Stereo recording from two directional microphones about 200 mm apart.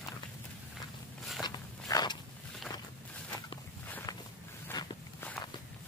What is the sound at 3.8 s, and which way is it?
Walk, 10° left (ahead or behind).